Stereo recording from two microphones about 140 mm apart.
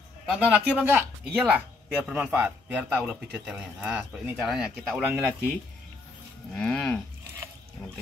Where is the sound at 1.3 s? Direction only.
5° right (ahead or behind).